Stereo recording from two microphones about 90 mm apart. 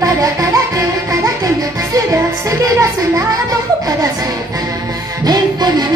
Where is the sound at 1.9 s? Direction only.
35° right (ahead or behind).